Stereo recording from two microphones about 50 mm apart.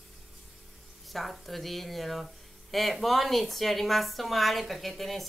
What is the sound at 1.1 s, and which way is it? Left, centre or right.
Speech, centre.